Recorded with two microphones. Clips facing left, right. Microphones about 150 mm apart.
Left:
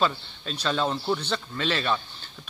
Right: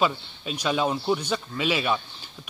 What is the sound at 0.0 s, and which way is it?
Speech, 10° right (ahead or behind).